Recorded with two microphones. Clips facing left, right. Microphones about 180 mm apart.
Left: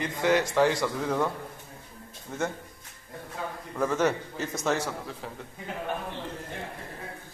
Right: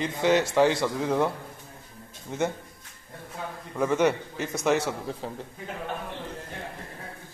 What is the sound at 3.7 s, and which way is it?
A man's voice, 15° right (ahead or behind).